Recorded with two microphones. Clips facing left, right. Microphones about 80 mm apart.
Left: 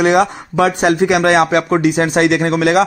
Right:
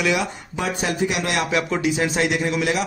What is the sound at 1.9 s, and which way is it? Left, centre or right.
Speech, left.